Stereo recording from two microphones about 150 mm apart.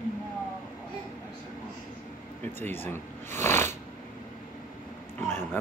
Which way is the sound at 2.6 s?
15° left (ahead or behind).